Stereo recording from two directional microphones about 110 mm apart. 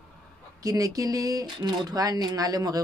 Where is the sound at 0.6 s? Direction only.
30° right (ahead or behind).